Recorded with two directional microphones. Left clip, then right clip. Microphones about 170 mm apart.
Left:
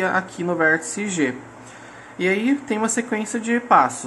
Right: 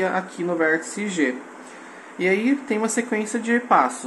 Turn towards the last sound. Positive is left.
turn(degrees=15)  # may be behind; listen again after turning